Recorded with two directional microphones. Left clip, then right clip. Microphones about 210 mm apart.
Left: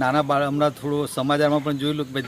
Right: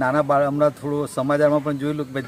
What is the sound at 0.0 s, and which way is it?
Speech, 5° right (ahead or behind).